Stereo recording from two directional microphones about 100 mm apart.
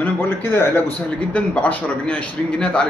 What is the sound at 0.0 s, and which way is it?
A man's voice, 20° left (ahead or behind).